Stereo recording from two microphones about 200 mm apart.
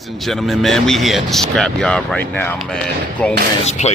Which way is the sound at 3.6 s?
35° left (ahead or behind).